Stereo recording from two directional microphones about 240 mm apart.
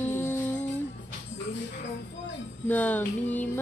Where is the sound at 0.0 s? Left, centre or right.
Centre.